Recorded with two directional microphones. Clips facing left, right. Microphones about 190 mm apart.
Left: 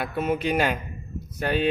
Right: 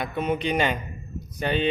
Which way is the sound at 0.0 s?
5° left (ahead or behind).